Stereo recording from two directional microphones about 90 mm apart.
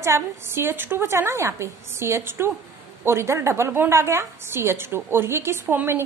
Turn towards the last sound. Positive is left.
turn(degrees=-25)  # may be behind; listen again after turning